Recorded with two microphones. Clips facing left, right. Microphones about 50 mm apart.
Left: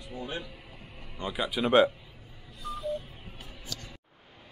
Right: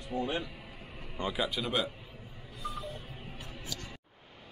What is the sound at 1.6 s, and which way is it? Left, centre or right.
Speech, left.